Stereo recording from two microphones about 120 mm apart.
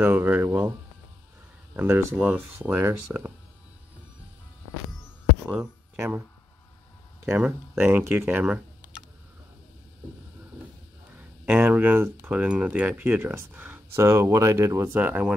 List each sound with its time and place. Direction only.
0.0 s speech: 15° right (ahead or behind)
5.5 s speech: 15° right (ahead or behind)
7.7 s speech: 20° right (ahead or behind)
11.1 s speech: 15° right (ahead or behind)